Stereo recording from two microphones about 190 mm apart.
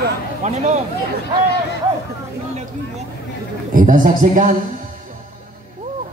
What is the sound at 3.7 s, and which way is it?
Speech, 45° right (ahead or behind).